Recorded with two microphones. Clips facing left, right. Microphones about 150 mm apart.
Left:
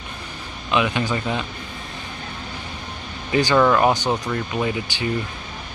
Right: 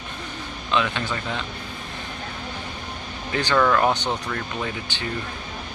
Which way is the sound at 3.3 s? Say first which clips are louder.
Left 4 dB; 15° left (ahead or behind).